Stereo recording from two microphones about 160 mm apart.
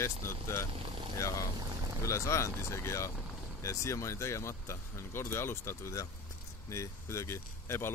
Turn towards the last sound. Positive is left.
turn(degrees=15)  # may be behind; listen again after turning